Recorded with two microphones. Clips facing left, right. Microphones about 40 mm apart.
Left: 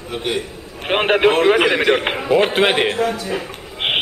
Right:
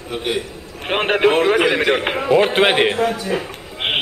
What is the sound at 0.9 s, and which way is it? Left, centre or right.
A man's voice, centre.